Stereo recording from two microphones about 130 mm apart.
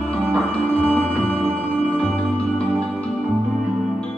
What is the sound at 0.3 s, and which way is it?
Music, 10° left (ahead or behind).